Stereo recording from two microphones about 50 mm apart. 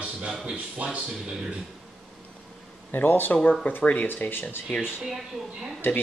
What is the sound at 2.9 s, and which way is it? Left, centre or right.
Speech, left.